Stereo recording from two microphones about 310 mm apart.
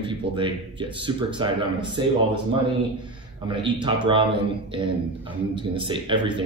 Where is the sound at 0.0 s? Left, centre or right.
Centre.